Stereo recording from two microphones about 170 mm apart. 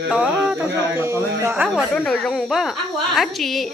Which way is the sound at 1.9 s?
5° left (ahead or behind).